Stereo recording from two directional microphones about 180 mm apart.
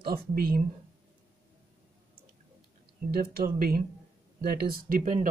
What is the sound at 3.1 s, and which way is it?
Speech, 55° right (ahead or behind).